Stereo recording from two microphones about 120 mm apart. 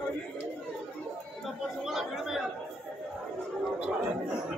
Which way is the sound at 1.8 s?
Centre (ahead or behind).